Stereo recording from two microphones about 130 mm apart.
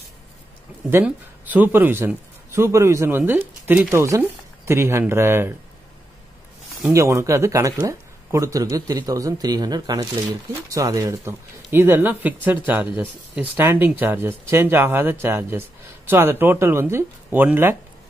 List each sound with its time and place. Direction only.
1.0 s a man's voice: 15° right (ahead or behind)
6.9 s speech: 25° right (ahead or behind)